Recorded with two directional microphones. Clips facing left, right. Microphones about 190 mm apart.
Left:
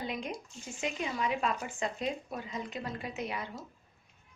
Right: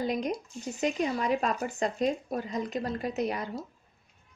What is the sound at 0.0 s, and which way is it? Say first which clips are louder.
A woman's voice: right 7 dB; 40° right (ahead or behind).